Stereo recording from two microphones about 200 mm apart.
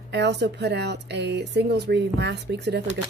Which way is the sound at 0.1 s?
60° right (ahead or behind).